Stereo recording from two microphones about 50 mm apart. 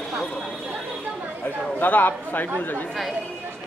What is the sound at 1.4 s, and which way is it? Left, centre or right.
Speech, left.